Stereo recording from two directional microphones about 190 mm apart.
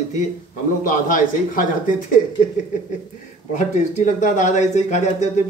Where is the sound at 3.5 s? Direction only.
40° left (ahead or behind).